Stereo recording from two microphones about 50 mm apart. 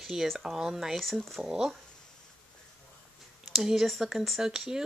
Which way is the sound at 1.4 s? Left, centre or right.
Centre.